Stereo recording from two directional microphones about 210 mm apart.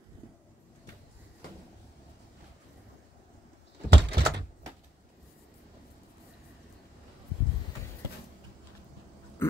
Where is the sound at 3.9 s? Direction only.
55° right (ahead or behind).